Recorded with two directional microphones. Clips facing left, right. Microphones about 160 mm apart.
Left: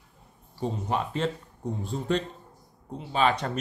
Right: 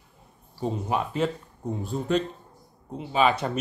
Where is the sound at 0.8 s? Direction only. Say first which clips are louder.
Right 2 dB; 10° right (ahead or behind).